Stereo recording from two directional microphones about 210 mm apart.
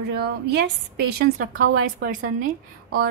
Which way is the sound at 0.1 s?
50° right (ahead or behind).